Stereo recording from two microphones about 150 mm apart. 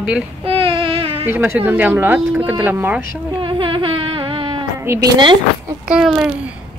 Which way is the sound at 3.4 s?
35° right (ahead or behind).